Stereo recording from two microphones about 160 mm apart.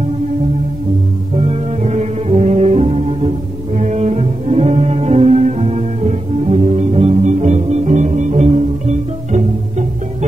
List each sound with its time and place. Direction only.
1.3 s brass instrument: 40° right (ahead or behind)